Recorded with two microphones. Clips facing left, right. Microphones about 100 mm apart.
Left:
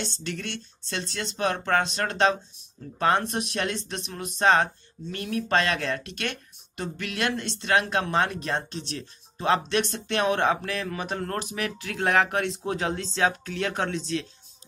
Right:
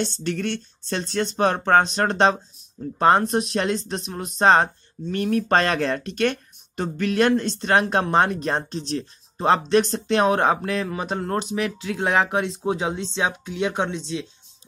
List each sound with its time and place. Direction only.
0.2 s speech: 45° right (ahead or behind); by 14.2 s 20° right (ahead or behind)